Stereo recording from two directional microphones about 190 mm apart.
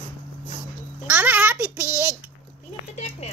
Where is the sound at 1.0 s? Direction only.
10° right (ahead or behind).